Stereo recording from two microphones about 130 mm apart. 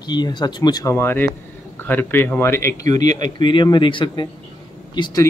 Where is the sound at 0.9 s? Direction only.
15° left (ahead or behind).